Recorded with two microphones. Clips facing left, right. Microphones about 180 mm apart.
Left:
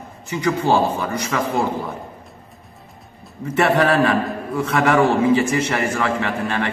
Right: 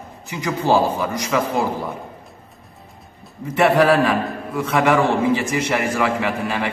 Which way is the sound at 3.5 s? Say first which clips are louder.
Right 2 dB; centre (ahead or behind).